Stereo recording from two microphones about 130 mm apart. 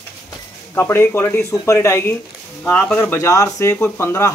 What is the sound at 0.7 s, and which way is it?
Speech, 20° left (ahead or behind).